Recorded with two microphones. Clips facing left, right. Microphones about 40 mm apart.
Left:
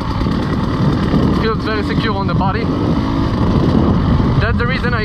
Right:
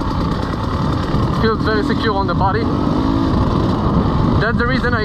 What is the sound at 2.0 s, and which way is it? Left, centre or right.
Vehicle, left.